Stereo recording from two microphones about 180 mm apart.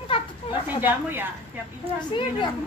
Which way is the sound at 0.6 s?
10° right (ahead or behind).